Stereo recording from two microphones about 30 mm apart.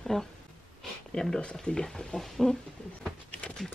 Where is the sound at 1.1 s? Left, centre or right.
Left.